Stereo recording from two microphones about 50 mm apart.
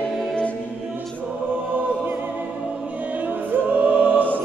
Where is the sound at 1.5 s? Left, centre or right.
Right.